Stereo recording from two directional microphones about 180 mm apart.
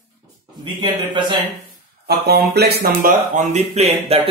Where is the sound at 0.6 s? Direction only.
25° right (ahead or behind).